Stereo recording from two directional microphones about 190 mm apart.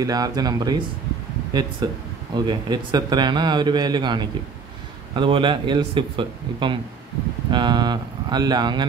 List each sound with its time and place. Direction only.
0.0 s a man's voice: 20° right (ahead or behind)